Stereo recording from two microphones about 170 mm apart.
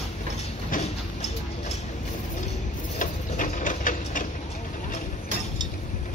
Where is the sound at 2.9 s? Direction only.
50° left (ahead or behind).